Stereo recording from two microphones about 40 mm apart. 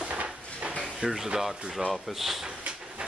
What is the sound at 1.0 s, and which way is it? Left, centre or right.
Speech, centre.